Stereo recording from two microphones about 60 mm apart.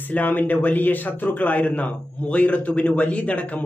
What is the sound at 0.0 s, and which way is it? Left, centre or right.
Speech, left.